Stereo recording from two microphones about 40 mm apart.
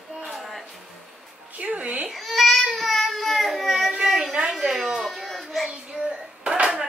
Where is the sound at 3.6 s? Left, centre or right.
Centre.